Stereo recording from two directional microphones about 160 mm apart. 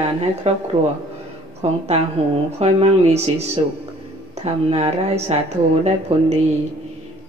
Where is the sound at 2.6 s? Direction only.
40° right (ahead or behind).